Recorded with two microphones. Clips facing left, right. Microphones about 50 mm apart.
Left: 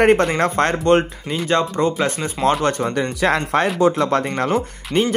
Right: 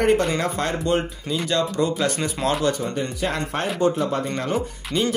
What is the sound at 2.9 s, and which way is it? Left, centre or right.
Speech, left.